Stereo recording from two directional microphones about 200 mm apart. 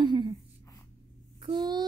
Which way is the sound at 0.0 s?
20° right (ahead or behind).